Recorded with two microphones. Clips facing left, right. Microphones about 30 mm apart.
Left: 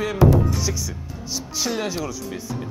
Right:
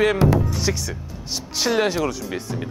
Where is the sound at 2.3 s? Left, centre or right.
Right.